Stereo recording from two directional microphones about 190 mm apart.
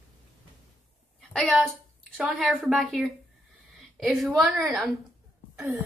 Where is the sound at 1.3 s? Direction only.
5° left (ahead or behind).